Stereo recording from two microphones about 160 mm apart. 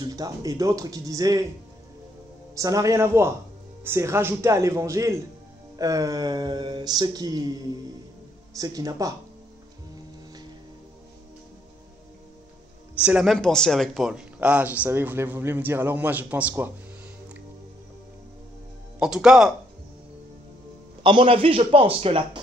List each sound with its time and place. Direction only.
0.0 s speech: 25° right (ahead or behind)
2.5 s speech: 20° right (ahead or behind)
8.5 s speech: 20° right (ahead or behind)
13.0 s speech: 5° right (ahead or behind)
18.9 s speech: 5° right (ahead or behind)
21.0 s a man's voice: 30° right (ahead or behind)